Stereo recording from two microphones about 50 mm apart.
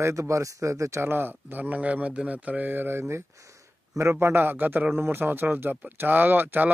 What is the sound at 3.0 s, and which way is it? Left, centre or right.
Speech, right.